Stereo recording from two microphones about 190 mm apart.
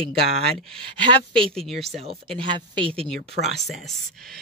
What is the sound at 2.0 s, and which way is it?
Speech, 30° right (ahead or behind).